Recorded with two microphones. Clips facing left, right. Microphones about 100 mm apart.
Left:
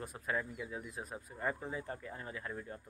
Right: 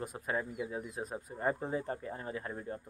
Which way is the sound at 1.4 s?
35° right (ahead or behind).